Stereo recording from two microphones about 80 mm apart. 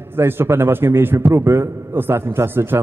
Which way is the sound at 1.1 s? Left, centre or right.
Right.